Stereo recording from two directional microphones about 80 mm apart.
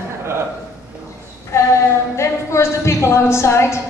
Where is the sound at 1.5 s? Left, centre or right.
Left.